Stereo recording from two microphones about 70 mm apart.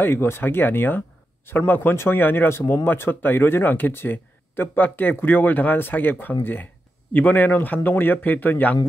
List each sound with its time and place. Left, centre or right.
0.0 s speech: left